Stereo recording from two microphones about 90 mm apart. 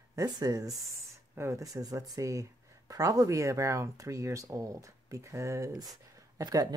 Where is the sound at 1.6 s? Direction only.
45° right (ahead or behind).